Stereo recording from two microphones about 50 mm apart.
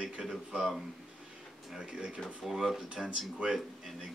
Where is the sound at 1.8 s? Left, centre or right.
Centre.